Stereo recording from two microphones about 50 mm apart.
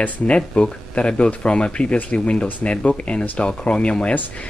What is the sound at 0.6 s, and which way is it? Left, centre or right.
Speech, left.